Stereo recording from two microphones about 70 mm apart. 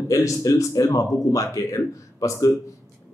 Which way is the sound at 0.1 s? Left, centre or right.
Left.